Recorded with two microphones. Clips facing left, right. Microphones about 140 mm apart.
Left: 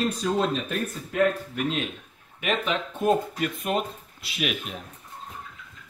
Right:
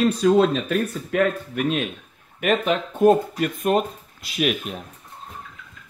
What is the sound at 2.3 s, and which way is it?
Speech, 50° right (ahead or behind).